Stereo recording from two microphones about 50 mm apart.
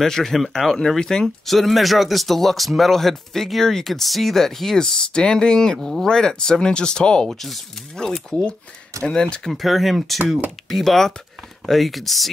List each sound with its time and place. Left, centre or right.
0.0 s speech: centre
9.5 s speech: centre